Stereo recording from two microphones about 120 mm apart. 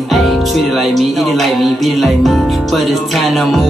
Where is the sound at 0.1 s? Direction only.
Centre (ahead or behind).